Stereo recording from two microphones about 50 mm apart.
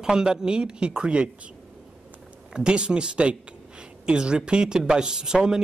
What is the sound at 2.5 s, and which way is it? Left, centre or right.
A man's voice, centre.